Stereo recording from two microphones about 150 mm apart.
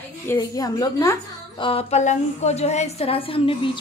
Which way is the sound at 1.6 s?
40° left (ahead or behind).